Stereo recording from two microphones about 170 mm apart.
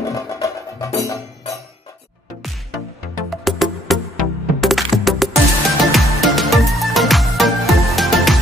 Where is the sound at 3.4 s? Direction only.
Centre (ahead or behind).